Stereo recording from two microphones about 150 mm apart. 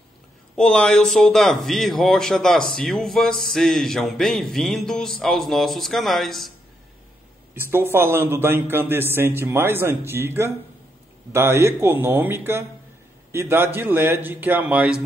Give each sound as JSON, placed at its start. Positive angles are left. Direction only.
{"t": 0.6, "sound": "a man's voice", "side_deg": 5}
{"t": 7.5, "sound": "a man's voice", "side_deg": -15}